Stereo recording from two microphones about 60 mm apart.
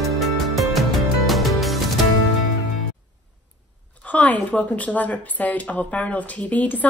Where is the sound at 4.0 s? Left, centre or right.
Left.